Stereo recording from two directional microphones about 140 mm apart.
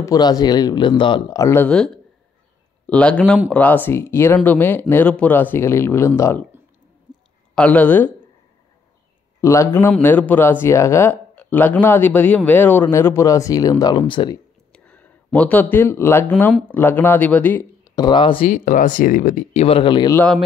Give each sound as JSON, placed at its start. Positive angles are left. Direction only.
{"t": 0.0, "sound": "speech", "side_deg": 25}
{"t": 1.4, "sound": "speech", "side_deg": 15}
{"t": 2.9, "sound": "speech", "side_deg": 10}
{"t": 7.5, "sound": "speech", "side_deg": 10}
{"t": 9.4, "sound": "a man's voice", "side_deg": 20}
{"t": 14.7, "sound": "speech", "side_deg": 10}
{"t": 17.8, "sound": "speech", "side_deg": 30}
{"t": 18.5, "sound": "speech", "side_deg": 65}
{"t": 19.5, "sound": "speech", "side_deg": 45}